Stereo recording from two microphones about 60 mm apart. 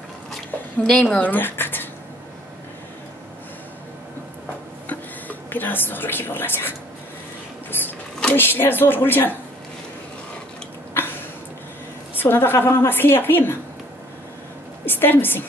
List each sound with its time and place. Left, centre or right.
0.8 s a woman's voice: centre
1.2 s speech: left
4.8 s a sound: left
7.7 s a sound: left
8.4 s a woman's voice: left
12.2 s a woman's voice: left
12.5 s a woman's voice: left
14.9 s a woman's voice: left